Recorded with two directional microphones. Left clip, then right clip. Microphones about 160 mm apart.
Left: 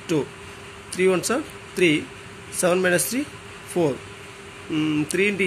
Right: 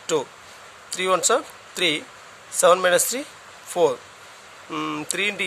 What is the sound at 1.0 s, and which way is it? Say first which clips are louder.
Speech: right 1 dB; 70° right (ahead or behind).